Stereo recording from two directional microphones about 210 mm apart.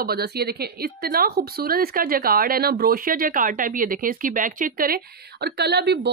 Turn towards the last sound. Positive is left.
turn(degrees=-55)  # may be behind; listen again after turning